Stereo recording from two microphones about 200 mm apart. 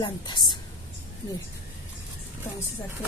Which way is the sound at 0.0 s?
20° left (ahead or behind).